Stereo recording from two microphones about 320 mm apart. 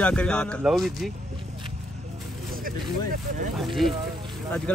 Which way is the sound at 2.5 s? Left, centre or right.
Right.